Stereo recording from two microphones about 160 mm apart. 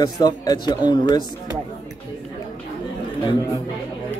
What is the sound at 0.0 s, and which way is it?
A man's voice, 25° left (ahead or behind).